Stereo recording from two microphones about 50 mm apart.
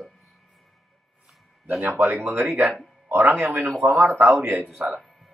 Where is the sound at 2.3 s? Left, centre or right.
Right.